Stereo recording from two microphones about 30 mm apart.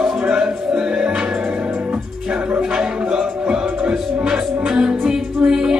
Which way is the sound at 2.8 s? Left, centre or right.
Right.